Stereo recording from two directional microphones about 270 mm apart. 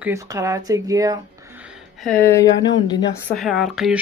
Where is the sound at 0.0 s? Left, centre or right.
Centre.